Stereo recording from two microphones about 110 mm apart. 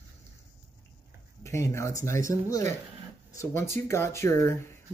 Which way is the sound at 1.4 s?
25° left (ahead or behind).